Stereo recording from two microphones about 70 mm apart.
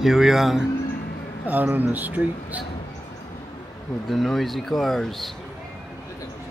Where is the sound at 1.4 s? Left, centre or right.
Right.